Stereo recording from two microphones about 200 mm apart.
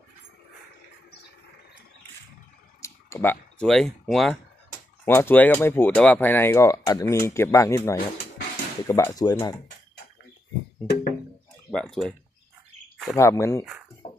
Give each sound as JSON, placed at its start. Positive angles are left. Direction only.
{"t": 2.8, "sound": "speech", "side_deg": 10}
{"t": 11.7, "sound": "speech", "side_deg": 5}
{"t": 13.1, "sound": "speech", "side_deg": 15}